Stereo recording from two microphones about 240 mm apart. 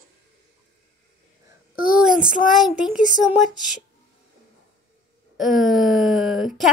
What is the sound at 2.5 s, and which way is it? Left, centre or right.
A child's voice, centre.